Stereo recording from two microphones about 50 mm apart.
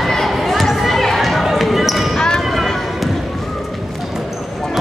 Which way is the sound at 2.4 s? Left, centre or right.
Centre.